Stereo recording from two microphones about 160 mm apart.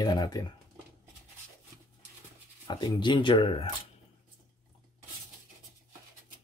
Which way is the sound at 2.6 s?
25° left (ahead or behind).